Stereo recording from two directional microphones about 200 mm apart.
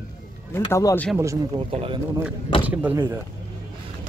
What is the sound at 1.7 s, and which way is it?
Speech, 25° right (ahead or behind).